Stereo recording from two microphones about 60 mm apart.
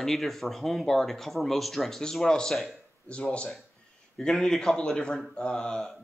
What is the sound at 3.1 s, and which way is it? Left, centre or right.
Speech, centre.